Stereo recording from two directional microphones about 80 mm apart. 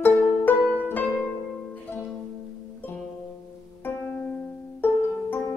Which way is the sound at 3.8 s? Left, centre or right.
Left.